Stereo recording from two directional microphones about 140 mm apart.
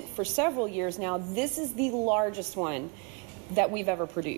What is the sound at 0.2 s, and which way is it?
Speech, 5° right (ahead or behind).